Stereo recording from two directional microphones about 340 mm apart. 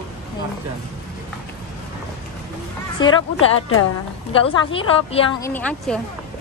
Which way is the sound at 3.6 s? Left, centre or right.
Left.